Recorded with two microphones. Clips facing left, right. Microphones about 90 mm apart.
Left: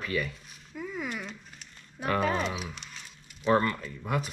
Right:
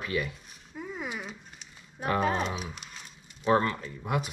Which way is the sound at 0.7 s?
35° right (ahead or behind).